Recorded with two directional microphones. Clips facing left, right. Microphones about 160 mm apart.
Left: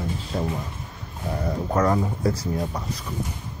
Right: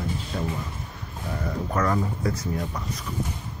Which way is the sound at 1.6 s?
20° left (ahead or behind).